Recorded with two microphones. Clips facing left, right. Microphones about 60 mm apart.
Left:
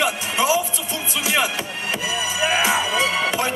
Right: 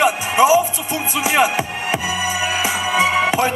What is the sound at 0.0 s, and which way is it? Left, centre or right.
Music, right.